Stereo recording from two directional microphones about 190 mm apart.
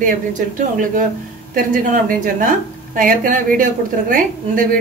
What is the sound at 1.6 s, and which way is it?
A woman's voice, 45° right (ahead or behind).